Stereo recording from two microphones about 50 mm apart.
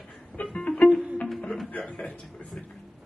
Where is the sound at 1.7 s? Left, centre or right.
Left.